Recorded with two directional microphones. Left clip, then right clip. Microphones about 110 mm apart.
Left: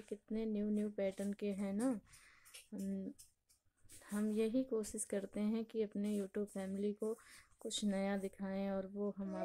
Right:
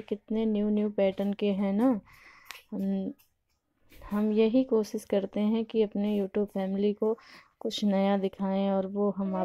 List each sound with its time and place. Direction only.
0.1 s speech: 25° right (ahead or behind)
4.0 s speech: 20° right (ahead or behind)